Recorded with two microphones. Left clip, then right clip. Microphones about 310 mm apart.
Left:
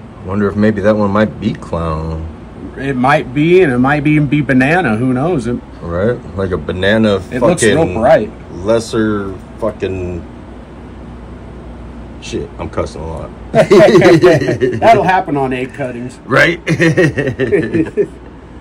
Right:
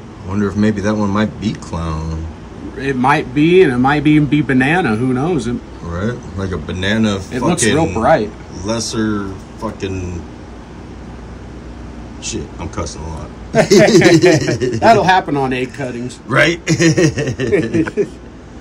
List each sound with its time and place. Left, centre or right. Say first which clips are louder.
0.3 s a man's voice: left 4 dB; centre
3.2 s speech: left 1 dB; right
4.5 s a man's voice: left 2 dB; centre
12.3 s a man's voice: left 4 dB; centre